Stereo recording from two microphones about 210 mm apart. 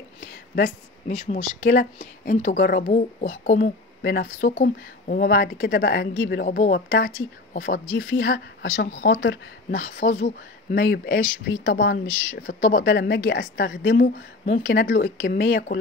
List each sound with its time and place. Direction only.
0.2 s speech: 45° left (ahead or behind)
8.1 s a woman's voice: 55° left (ahead or behind)
8.9 s speech: 40° left (ahead or behind)